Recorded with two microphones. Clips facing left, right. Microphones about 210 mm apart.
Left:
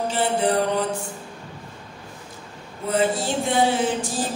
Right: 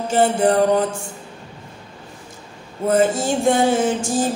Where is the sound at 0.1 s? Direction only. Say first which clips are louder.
Right 7 dB; 45° right (ahead or behind).